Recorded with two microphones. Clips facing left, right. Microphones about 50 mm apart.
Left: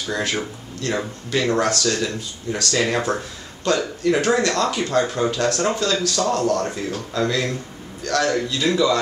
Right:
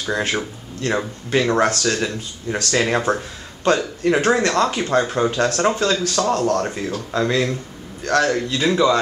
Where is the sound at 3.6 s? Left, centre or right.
Right.